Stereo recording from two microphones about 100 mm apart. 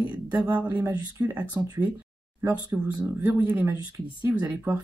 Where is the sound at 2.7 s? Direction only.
10° right (ahead or behind).